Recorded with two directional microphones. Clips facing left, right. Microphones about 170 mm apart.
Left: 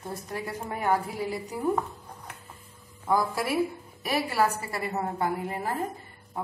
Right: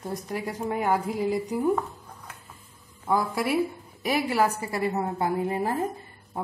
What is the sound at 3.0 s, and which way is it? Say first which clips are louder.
A woman's voice: right 1 dB; 10° right (ahead or behind).